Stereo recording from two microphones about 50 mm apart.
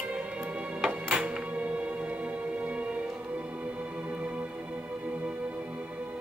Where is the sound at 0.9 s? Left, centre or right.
Right.